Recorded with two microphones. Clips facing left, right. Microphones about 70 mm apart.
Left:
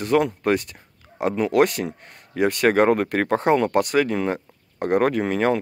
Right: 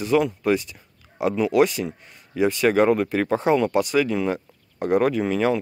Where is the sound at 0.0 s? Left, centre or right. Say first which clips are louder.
Even; left.